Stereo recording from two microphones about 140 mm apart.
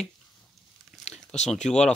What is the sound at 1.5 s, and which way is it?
Speech, 55° left (ahead or behind).